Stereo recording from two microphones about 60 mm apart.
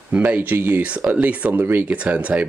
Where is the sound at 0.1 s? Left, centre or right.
Right.